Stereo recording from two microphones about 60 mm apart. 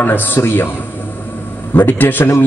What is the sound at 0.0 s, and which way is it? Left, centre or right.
Speech, left.